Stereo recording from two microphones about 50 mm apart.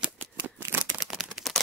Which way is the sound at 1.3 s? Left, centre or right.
Centre.